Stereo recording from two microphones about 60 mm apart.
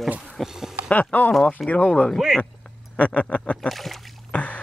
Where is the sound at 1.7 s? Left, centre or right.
Left.